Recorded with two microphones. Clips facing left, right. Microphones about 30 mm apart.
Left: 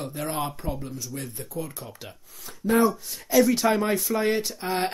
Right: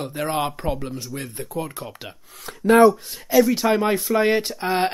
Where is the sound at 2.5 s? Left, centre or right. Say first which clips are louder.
Right 8 dB; right.